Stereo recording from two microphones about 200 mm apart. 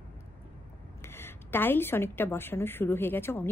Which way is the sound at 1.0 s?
10° left (ahead or behind).